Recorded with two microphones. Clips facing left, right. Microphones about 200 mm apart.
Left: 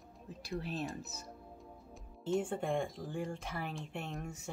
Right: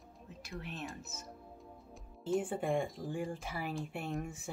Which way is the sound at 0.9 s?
Centre (ahead or behind).